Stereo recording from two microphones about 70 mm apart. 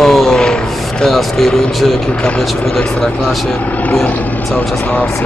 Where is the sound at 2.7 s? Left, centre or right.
Centre.